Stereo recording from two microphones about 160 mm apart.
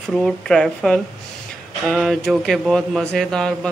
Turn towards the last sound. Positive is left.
turn(degrees=5)  # may be behind; listen again after turning